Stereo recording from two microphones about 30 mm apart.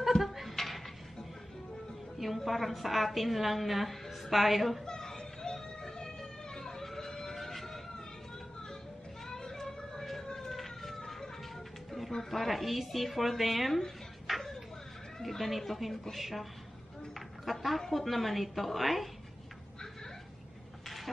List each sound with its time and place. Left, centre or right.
0.1 s a sound: centre
2.1 s a woman's voice: centre
4.8 s music: left
9.3 s music: centre
10.2 s siren: centre
10.5 s emergency vehicle: centre
12.1 s a woman's voice: centre
13.4 s dishes: centre
15.2 s a woman's voice: centre
17.5 s a woman's voice: centre